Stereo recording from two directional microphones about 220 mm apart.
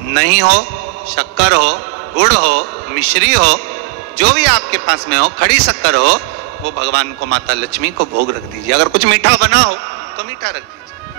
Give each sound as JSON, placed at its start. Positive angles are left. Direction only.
{"t": 0.1, "sound": "a man's voice", "side_deg": -45}
{"t": 8.7, "sound": "a man's voice", "side_deg": -50}